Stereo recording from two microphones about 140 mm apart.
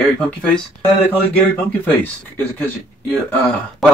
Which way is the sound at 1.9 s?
10° left (ahead or behind).